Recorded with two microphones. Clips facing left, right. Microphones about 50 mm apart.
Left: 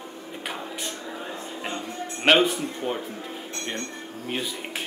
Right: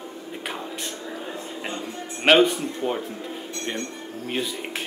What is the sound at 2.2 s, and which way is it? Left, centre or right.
Speech, centre.